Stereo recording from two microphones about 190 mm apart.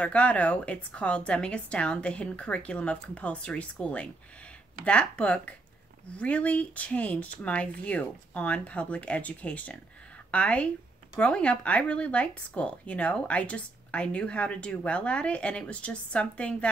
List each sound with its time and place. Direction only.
0.0 s a woman's voice: 5° left (ahead or behind)